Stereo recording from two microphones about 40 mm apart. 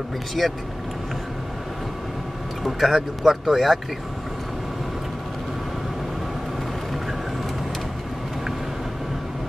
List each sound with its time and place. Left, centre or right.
0.4 s speech: centre
2.6 s speech: centre